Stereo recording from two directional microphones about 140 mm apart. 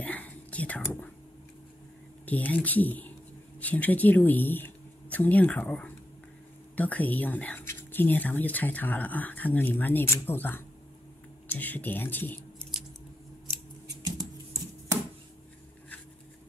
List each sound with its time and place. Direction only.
0.0 s whispering: 10° left (ahead or behind)
2.2 s speech: 10° left (ahead or behind)
13.8 s a sound: 25° right (ahead or behind)